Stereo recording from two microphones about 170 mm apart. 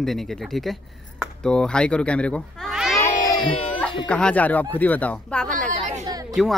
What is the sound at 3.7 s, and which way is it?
Speech, 5° left (ahead or behind).